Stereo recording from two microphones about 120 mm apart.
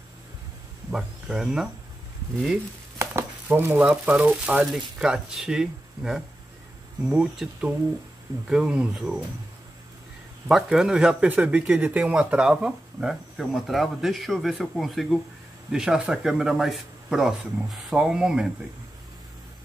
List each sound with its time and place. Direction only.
0.9 s speech: 5° right (ahead or behind)
3.0 s a sound: 20° right (ahead or behind)
3.8 s speech: 10° right (ahead or behind)
10.5 s speech: 5° right (ahead or behind)